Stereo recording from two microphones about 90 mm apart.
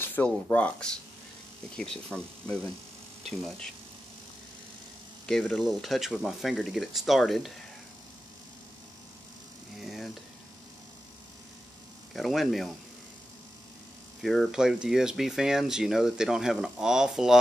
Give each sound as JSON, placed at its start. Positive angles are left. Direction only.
{"t": 0.0, "sound": "speech", "side_deg": 20}
{"t": 5.2, "sound": "speech", "side_deg": 10}
{"t": 9.8, "sound": "a sound", "side_deg": 0}
{"t": 12.1, "sound": "speech", "side_deg": 0}
{"t": 14.2, "sound": "speech", "side_deg": 5}
{"t": 14.5, "sound": "speech", "side_deg": -5}